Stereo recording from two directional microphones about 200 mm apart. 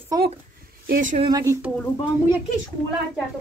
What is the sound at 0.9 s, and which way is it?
Speech, 40° right (ahead or behind).